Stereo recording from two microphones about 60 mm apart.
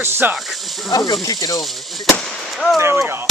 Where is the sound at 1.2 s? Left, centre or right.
Left.